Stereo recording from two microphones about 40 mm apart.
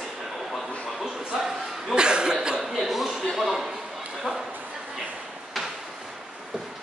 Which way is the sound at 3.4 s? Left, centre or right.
Centre.